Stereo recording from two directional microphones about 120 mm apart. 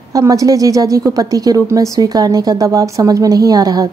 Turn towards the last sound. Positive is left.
turn(degrees=-30)  # may be behind; listen again after turning